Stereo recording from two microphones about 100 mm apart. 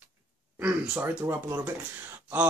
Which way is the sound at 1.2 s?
30° right (ahead or behind).